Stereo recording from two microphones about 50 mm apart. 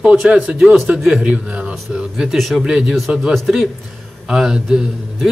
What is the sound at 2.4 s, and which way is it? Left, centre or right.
Speech, centre.